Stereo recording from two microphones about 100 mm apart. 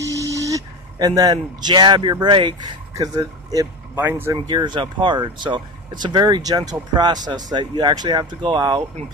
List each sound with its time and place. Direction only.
0.0 s speech: 35° right (ahead or behind); by 2.5 s 50° right (ahead or behind)
3.0 s speech: 40° right (ahead or behind)
3.9 s speech: 20° right (ahead or behind)
4.5 s speech: 45° right (ahead or behind)